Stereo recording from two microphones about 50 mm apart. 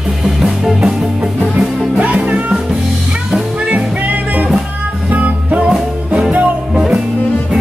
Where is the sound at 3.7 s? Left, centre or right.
Right.